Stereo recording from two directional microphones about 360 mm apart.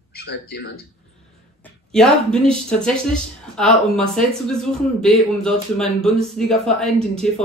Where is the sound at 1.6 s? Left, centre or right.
Centre.